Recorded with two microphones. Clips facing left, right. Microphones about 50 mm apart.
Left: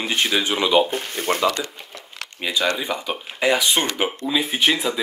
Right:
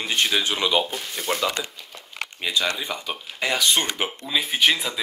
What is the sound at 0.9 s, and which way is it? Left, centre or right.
Speech, left.